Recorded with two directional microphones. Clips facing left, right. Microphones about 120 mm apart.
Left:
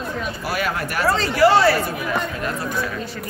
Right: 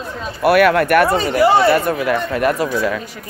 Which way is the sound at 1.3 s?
15° right (ahead or behind).